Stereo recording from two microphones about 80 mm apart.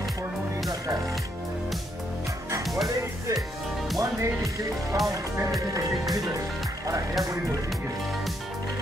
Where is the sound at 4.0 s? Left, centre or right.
Right.